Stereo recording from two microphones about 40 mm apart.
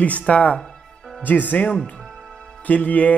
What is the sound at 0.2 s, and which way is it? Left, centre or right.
Speech, left.